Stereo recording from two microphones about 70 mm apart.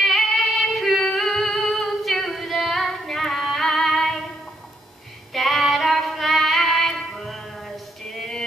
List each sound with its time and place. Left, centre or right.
0.0 s female singing: centre
5.3 s female singing: centre
8.1 s music: centre